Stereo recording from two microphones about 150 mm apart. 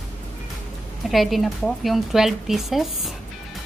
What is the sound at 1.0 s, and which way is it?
Speech, centre (ahead or behind).